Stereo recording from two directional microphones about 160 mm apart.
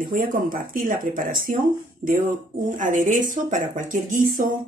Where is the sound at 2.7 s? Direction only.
55° right (ahead or behind).